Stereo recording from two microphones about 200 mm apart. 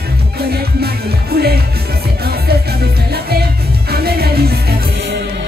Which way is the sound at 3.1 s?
50° right (ahead or behind).